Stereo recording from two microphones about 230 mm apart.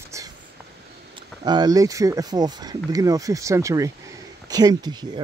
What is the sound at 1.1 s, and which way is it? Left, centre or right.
Speech, centre.